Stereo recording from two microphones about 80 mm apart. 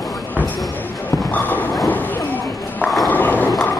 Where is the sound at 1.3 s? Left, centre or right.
Left.